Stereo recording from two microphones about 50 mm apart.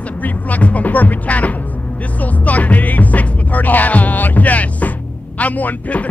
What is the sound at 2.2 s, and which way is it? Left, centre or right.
Music, left.